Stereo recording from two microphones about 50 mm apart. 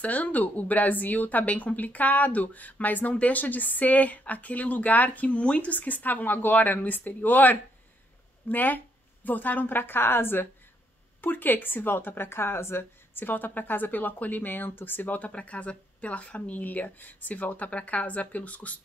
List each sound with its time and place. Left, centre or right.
0.0 s a woman's voice: left